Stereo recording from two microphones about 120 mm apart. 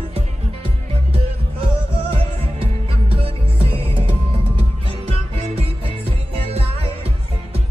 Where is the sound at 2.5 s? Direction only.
50° right (ahead or behind).